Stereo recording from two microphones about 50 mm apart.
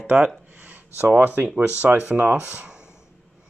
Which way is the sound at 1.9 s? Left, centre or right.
Right.